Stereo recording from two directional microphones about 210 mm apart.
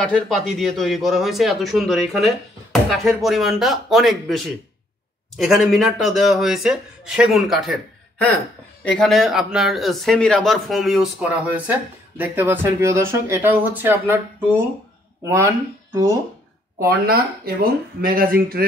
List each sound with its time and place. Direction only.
0.0 s a man's voice: centre (ahead or behind)
5.4 s a man's voice: centre (ahead or behind)
8.8 s a man's voice: 5° left (ahead or behind); by 16.1 s 15° right (ahead or behind)
16.8 s speech: 45° right (ahead or behind)